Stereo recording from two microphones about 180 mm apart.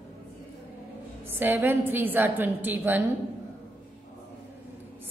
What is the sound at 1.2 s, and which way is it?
A woman's voice, 15° right (ahead or behind).